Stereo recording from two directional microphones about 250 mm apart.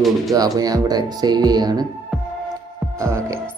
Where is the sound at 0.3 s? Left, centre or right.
Centre.